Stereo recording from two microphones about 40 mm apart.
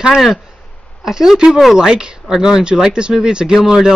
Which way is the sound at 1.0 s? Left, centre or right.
Centre.